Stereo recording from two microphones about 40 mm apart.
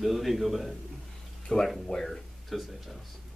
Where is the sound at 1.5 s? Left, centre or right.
Centre.